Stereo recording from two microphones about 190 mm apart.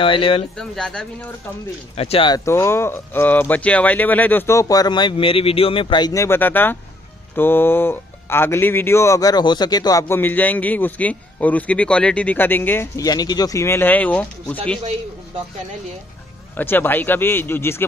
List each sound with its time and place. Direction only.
0.0 s speech: 30° left (ahead or behind)
0.6 s speech: 5° left (ahead or behind)
2.0 s speech: 30° left (ahead or behind); by 14.6 s 10° left (ahead or behind)
16.5 s speech: 10° left (ahead or behind)